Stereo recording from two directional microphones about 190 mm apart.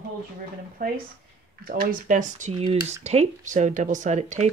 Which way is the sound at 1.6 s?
50° right (ahead or behind).